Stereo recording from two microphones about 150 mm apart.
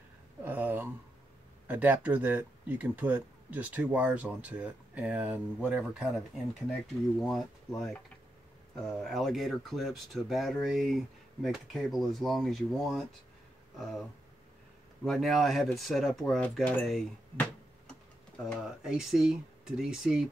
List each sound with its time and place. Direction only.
0.4 s a sound: 15° right (ahead or behind)
1.7 s speech: 10° right (ahead or behind)
15.0 s speech: centre (ahead or behind)